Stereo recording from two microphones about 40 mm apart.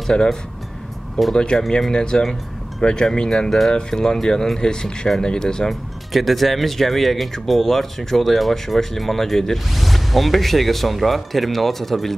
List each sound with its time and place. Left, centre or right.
0.1 s speech: centre
3.4 s speech: centre
5.7 s speech: centre